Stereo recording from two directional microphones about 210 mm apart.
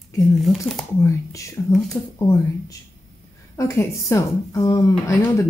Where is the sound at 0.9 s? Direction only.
15° left (ahead or behind).